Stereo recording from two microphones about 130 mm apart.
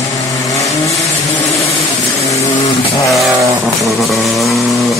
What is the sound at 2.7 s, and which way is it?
Vehicle, 25° left (ahead or behind).